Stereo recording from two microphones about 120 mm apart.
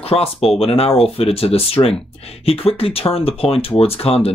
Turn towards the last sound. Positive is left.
turn(degrees=55)  # may be behind; listen again after turning